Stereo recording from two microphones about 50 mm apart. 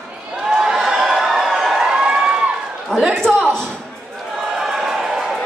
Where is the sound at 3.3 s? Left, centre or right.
Right.